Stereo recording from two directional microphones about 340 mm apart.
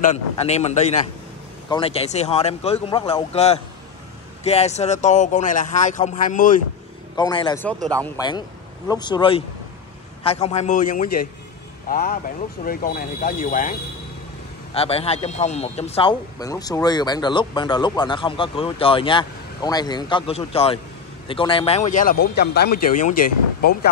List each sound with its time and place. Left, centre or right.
0.0 s a man's voice: centre
7.2 s a man's voice: centre